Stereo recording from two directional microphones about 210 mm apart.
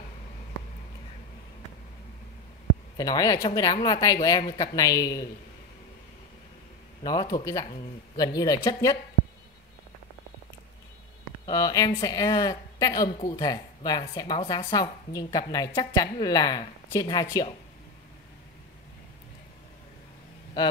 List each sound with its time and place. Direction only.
3.0 s speech: 15° left (ahead or behind)
7.0 s speech: 20° left (ahead or behind)
11.4 s speech: 15° left (ahead or behind)